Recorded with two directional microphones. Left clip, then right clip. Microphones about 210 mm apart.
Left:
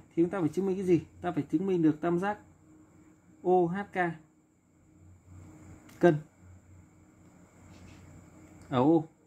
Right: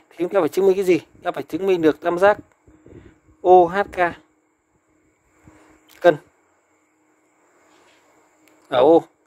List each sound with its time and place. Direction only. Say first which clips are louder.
0.2 s speech: right 11 dB; 50° right (ahead or behind)
3.4 s speech: right 14 dB; 50° right (ahead or behind)
8.6 s speech: right 12 dB; 50° right (ahead or behind)